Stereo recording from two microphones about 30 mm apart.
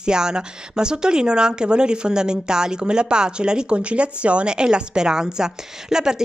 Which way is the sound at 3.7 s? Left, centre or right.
Right.